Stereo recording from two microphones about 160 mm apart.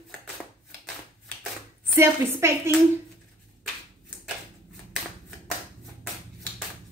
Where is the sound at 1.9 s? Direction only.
15° right (ahead or behind).